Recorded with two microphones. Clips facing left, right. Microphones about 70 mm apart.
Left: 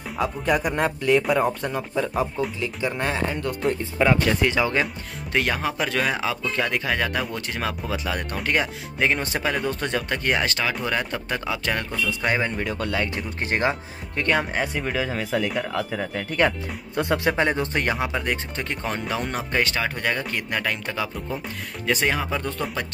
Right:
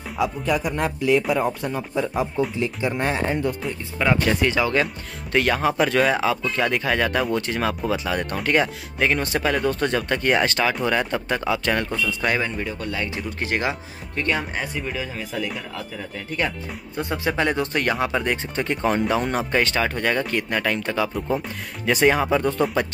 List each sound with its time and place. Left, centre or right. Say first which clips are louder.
0.2 s speech: even; centre
2.0 s speech: right 2 dB; centre
2.6 s speech: right 2 dB; right
3.4 s speech: left 2 dB; centre
5.6 s speech: right 5 dB; centre
12.6 s speech: left 2 dB; left
13.0 s speech: even; left
14.9 s speech: left 4 dB; left
16.3 s speech: left 3 dB; left
17.4 s speech: even; left
17.9 s speech: right 3 dB; centre
21.8 s speech: right 5 dB; centre